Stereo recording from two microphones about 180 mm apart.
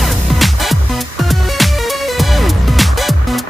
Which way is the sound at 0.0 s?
Centre (ahead or behind).